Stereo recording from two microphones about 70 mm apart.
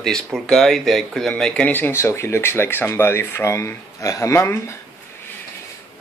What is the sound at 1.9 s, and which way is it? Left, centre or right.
Speech, left.